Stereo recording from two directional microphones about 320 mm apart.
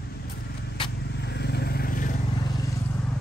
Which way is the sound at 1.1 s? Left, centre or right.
Left.